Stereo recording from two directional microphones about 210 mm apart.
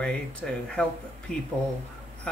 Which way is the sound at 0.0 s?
5° left (ahead or behind).